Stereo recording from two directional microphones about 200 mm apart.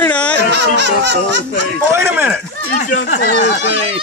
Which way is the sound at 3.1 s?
50° left (ahead or behind).